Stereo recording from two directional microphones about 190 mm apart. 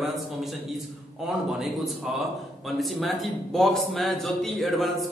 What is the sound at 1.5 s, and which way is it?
A man's voice, centre (ahead or behind).